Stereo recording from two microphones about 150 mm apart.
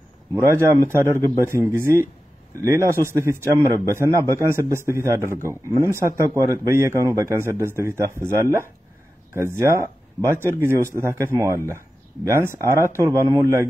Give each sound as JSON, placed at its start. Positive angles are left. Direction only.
{"t": 0.3, "sound": "a man's voice", "side_deg": -20}